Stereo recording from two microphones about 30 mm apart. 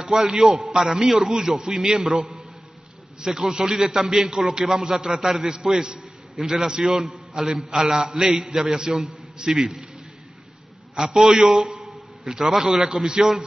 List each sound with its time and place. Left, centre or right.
0.4 s a man's voice: centre
11.0 s a man's voice: centre